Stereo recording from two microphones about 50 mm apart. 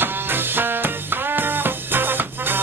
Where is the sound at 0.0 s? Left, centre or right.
Right.